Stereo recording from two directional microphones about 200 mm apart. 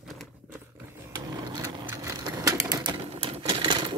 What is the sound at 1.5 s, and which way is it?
Typewriter, 15° right (ahead or behind).